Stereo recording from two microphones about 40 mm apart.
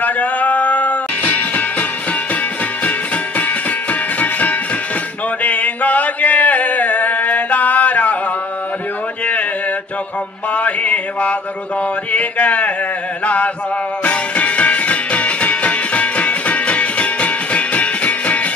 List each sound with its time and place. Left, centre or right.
0.0 s music: left
4.2 s music: left
5.4 s mantra: left
10.5 s mantra: left
12.1 s a sound: left
14.0 s music: left